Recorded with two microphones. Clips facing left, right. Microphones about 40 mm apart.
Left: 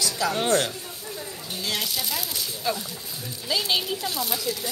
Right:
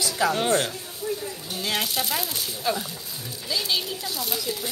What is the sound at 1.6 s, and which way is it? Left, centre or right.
Speech, right.